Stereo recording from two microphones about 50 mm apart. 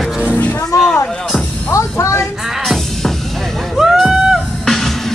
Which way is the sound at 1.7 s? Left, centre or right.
Left.